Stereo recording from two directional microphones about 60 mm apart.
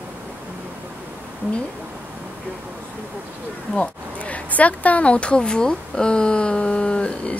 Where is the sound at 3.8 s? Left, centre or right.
Left.